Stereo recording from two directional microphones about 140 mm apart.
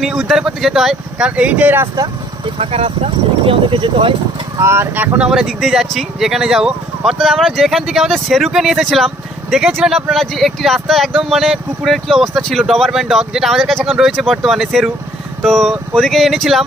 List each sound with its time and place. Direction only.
0.0 s speech: centre (ahead or behind)
2.4 s speech: 45° right (ahead or behind)
4.6 s speech: 15° right (ahead or behind); by 16.6 s centre (ahead or behind)